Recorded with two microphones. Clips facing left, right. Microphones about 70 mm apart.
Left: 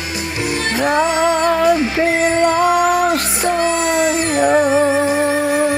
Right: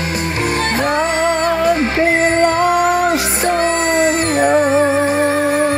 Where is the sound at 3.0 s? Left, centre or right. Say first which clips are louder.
Right 1 dB; right.